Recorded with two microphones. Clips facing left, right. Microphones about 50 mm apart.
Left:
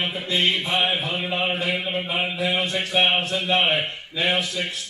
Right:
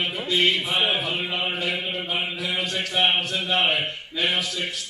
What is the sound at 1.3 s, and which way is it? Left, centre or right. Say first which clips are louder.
Mantra: left 2 dB; left.